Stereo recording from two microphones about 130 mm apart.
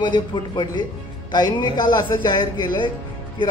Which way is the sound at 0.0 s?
35° left (ahead or behind).